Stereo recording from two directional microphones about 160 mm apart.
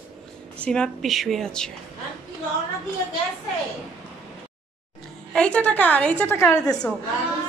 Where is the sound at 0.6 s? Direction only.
5° left (ahead or behind).